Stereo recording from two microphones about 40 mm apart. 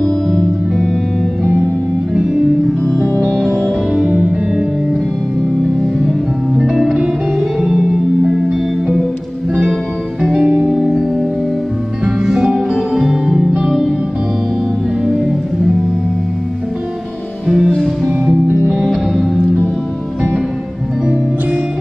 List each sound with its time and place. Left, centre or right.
0.0 s music: left
4.1 s music: centre
5.9 s music: centre
7.6 s music: centre
10.2 s music: centre
10.7 s music: centre
12.4 s music: centre
17.5 s music: centre